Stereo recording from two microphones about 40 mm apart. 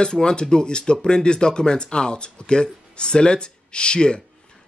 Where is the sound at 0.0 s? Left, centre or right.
Centre.